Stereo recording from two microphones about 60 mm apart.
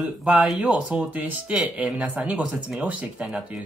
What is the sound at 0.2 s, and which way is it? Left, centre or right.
Speech, right.